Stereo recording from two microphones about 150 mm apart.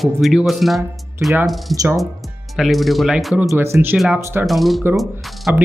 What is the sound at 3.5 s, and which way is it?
Speech, 15° right (ahead or behind).